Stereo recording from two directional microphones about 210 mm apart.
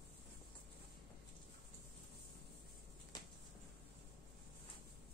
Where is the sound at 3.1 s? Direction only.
20° left (ahead or behind).